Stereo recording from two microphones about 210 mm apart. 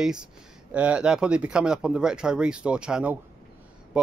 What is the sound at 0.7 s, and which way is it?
Speech, 5° right (ahead or behind).